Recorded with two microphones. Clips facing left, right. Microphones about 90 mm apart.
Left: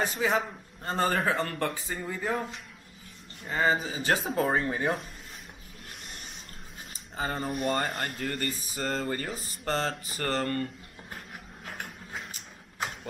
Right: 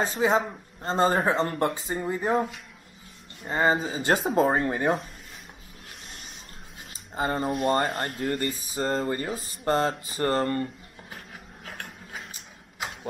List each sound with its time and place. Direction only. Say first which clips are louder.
0.0 s speech: right 4 dB; 30° right (ahead or behind)
3.4 s speech: right 3 dB; 35° right (ahead or behind)
7.2 s speech: right 5 dB; 20° right (ahead or behind)
9.3 s speech: right 6 dB; 15° right (ahead or behind)
10.0 s speech: right 5 dB; 25° right (ahead or behind)
11.6 s a sound: even; centre (ahead or behind)